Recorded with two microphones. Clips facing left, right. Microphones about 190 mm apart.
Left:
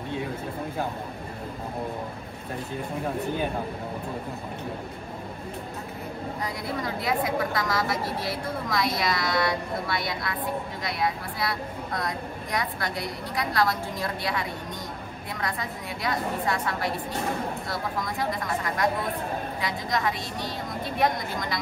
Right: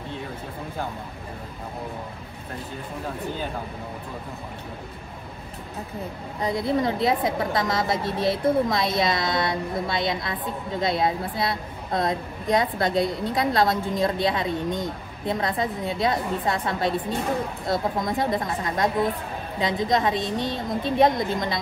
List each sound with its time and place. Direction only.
6.4 s a woman's voice: 25° right (ahead or behind)